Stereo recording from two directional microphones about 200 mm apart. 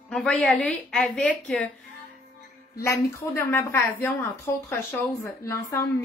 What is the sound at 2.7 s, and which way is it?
Speech, 15° left (ahead or behind).